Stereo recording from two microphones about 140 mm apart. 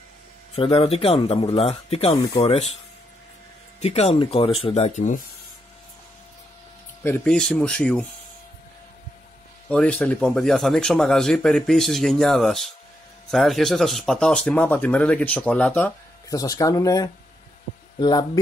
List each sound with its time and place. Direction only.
0.6 s speech: 45° left (ahead or behind)
3.8 s speech: 50° left (ahead or behind)
7.2 s speech: 5° left (ahead or behind)
9.7 s speech: 5° left (ahead or behind)
16.3 s speech: 25° left (ahead or behind)